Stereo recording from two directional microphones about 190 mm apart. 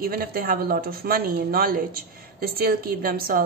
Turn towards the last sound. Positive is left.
turn(degrees=-50)  # may be behind; listen again after turning